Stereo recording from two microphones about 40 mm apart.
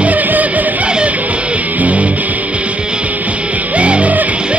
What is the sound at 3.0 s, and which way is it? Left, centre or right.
Music, right.